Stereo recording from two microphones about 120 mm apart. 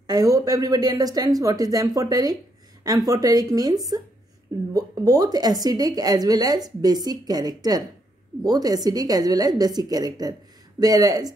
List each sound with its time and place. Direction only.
0.0 s a woman's voice: 30° right (ahead or behind)